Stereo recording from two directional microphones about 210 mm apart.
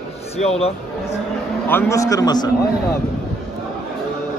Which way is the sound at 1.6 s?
10° left (ahead or behind).